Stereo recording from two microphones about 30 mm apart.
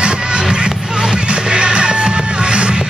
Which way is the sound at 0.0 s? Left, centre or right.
Right.